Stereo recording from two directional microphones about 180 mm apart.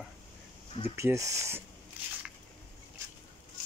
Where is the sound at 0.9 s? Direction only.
15° right (ahead or behind).